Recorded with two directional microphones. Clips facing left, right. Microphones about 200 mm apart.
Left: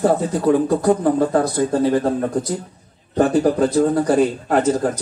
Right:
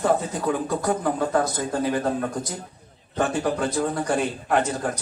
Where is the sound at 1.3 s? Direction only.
35° left (ahead or behind).